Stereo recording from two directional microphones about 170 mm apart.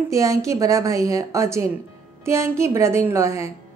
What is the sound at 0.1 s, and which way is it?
A woman's voice, 20° right (ahead or behind).